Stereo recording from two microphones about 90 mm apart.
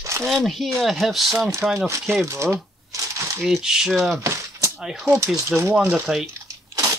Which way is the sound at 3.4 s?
5° right (ahead or behind).